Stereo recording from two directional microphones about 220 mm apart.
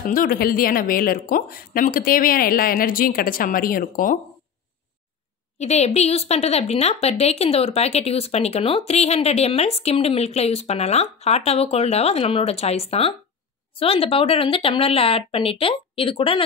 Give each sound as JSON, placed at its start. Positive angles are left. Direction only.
{"t": 0.0, "sound": "speech", "side_deg": 40}
{"t": 5.6, "sound": "a woman's voice", "side_deg": 30}